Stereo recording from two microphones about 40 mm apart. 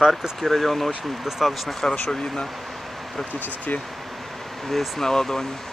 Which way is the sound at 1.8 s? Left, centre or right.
Centre.